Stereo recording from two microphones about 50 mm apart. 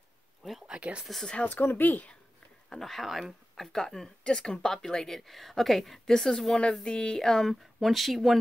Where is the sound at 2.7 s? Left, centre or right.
Centre.